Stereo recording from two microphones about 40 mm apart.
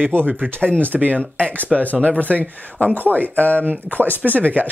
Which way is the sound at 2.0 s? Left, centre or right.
Left.